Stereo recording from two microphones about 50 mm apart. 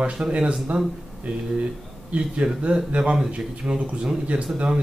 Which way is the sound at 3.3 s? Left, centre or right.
Right.